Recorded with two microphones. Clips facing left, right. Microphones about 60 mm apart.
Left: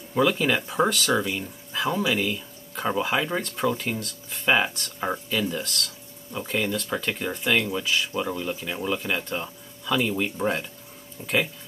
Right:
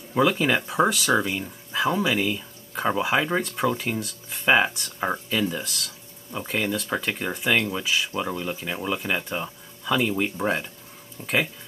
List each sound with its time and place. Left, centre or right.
0.1 s speech: centre